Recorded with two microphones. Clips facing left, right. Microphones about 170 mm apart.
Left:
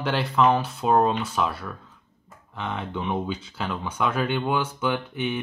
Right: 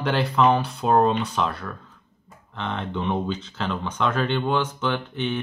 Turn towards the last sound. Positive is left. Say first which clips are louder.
# even
turn(degrees=10)  # may be behind; listen again after turning